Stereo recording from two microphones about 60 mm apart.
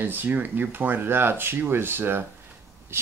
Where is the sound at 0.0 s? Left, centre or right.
Right.